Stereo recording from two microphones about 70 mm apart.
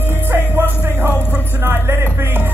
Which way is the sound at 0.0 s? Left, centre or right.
Right.